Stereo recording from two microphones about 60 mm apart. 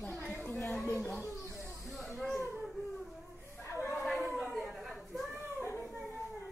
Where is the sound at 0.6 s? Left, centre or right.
Centre.